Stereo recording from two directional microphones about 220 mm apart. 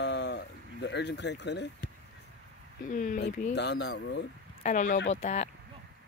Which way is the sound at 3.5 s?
50° left (ahead or behind).